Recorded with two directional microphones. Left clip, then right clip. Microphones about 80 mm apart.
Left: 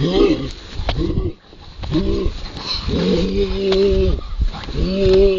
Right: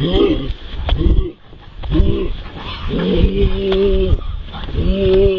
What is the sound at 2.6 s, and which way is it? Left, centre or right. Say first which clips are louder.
Dog: left 1 dB; left.